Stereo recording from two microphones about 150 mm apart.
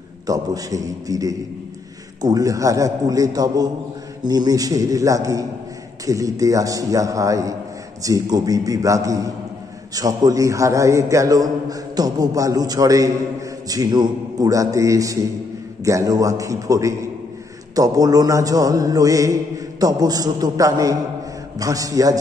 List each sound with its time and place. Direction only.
0.3 s a man's voice: 25° right (ahead or behind)